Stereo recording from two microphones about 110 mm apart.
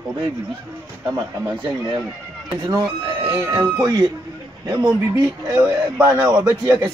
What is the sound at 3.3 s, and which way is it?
Speech, 25° right (ahead or behind).